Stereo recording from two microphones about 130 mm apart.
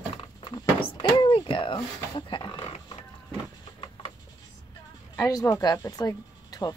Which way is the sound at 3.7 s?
40° left (ahead or behind).